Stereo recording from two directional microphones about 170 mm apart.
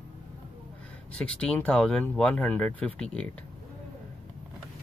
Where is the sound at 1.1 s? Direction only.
5° left (ahead or behind).